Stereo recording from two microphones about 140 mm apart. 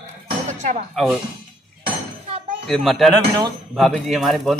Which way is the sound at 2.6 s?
Centre (ahead or behind).